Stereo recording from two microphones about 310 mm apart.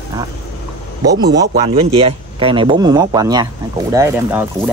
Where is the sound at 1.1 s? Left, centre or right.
Right.